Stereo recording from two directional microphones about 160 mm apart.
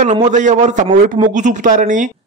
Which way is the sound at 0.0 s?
50° right (ahead or behind).